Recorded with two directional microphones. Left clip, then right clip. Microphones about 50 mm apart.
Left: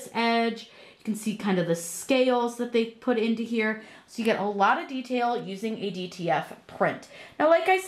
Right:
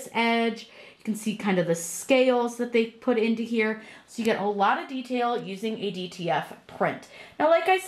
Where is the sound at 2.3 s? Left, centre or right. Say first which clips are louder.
Right 1 dB; left.